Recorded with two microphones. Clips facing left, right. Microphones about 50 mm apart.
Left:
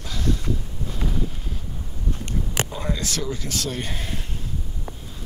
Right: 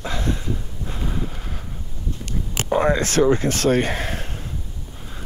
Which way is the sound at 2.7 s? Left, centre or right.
Right.